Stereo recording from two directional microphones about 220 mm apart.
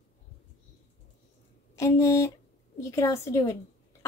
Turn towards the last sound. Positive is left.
turn(degrees=15)  # may be behind; listen again after turning